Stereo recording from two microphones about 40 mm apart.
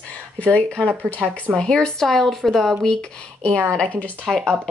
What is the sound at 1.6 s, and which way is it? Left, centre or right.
Speech, centre.